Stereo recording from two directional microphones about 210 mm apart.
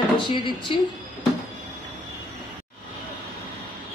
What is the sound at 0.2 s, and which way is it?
Speech, 20° left (ahead or behind).